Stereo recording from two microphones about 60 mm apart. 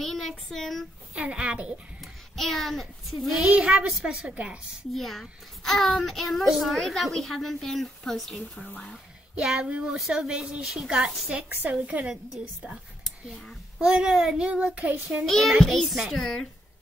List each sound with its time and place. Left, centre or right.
0.0 s child singing: centre
1.1 s a woman's voice: centre
2.3 s a child's voice: centre
3.5 s a child's voice: centre
4.9 s a child's voice: centre
9.4 s a child's voice: centre
9.7 s a woman's voice: right
9.9 s a child's voice: centre
13.7 s a child's voice: centre
15.2 s a child's voice: centre